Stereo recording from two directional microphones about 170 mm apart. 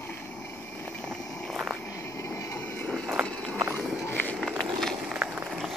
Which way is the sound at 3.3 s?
5° left (ahead or behind).